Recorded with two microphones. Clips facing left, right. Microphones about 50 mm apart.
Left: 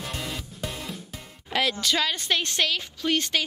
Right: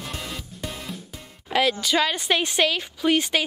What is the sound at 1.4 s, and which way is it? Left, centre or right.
Speech, centre.